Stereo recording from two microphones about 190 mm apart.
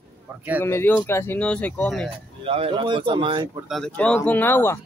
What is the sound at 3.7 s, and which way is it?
Speech, 5° left (ahead or behind).